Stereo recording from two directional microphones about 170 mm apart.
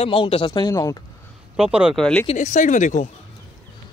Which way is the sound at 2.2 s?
45° left (ahead or behind).